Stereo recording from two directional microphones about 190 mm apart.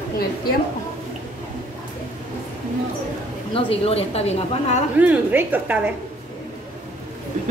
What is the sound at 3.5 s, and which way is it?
A woman's voice, 30° left (ahead or behind).